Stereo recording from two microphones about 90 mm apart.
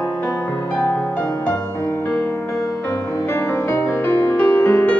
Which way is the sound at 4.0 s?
20° left (ahead or behind).